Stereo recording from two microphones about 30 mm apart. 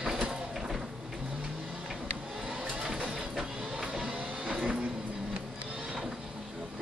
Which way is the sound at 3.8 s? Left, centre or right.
Right.